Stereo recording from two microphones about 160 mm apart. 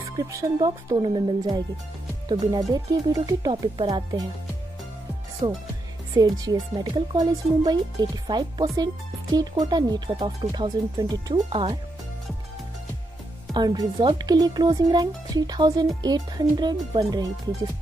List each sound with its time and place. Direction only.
0.3 s speech: 20° right (ahead or behind)
5.4 s speech: 25° right (ahead or behind)
13.5 s speech: 25° right (ahead or behind)